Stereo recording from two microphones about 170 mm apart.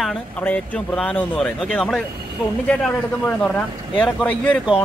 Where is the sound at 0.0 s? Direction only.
5° left (ahead or behind).